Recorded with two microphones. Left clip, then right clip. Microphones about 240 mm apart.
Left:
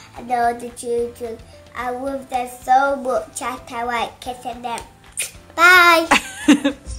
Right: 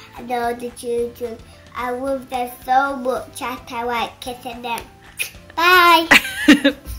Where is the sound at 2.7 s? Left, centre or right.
Centre.